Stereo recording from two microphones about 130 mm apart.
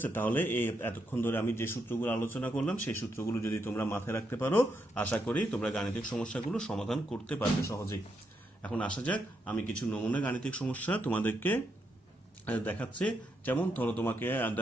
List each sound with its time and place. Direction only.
0.0 s speech: 15° left (ahead or behind)
7.3 s speech: 20° left (ahead or behind)
8.6 s speech: 10° left (ahead or behind)